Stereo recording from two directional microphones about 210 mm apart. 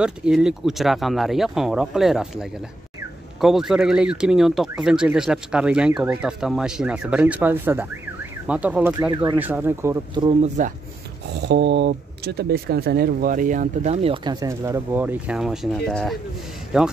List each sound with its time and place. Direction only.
0.0 s speech: 5° right (ahead or behind); by 10.5 s 20° right (ahead or behind)
11.4 s speech: 55° right (ahead or behind); by 16.9 s 5° right (ahead or behind)